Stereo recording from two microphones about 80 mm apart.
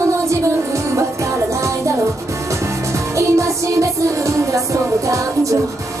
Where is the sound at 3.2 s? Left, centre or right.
Right.